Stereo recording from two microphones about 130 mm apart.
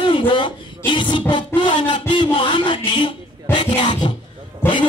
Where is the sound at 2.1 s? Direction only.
35° left (ahead or behind).